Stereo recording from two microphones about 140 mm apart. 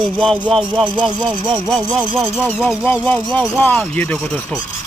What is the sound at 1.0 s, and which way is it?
Speech, 35° right (ahead or behind).